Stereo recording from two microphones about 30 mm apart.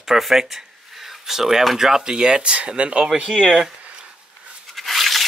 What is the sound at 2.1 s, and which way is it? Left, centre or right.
Speech, right.